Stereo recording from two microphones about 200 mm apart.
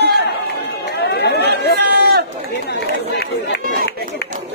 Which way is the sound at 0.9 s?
55° left (ahead or behind).